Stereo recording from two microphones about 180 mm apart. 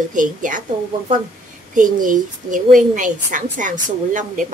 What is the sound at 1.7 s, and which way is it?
A woman's voice, 50° right (ahead or behind).